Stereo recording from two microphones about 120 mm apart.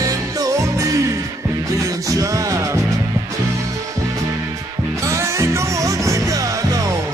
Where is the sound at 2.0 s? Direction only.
25° right (ahead or behind).